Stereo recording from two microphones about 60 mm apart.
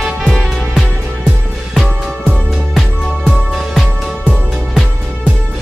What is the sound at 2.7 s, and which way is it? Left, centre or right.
Music, centre.